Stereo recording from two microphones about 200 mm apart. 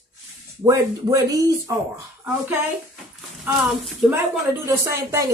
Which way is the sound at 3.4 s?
5° right (ahead or behind).